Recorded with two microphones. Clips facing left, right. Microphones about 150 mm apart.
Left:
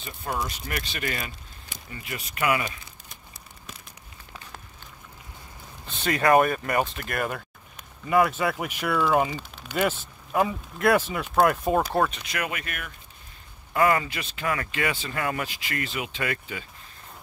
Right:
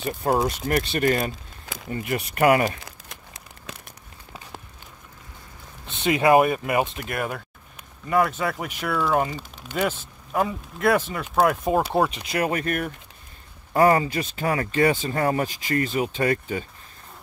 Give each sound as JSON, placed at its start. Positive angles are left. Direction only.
{"t": 0.0, "sound": "speech", "side_deg": -50}
{"t": 2.8, "sound": "crumpling", "side_deg": -90}
{"t": 6.0, "sound": "speech", "side_deg": -10}
{"t": 12.2, "sound": "speech", "side_deg": -30}